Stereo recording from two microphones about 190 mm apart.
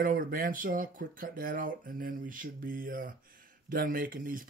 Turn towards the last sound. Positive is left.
turn(degrees=-45)  # may be behind; listen again after turning